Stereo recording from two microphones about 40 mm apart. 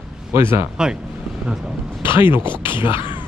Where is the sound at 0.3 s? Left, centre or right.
Right.